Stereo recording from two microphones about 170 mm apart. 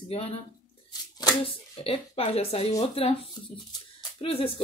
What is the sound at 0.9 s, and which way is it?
Hands, 25° left (ahead or behind).